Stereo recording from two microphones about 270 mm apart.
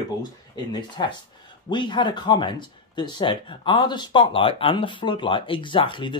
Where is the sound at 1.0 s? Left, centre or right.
Centre.